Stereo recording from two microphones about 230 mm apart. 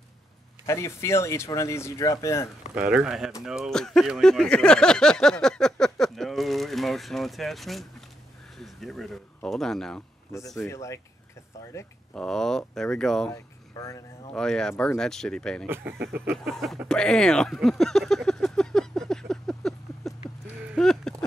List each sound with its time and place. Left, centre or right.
0.7 s speech: centre
2.9 s speech: centre
13.3 s speech: centre
14.3 s speech: centre
16.0 s a sound: right
16.4 s a sound: centre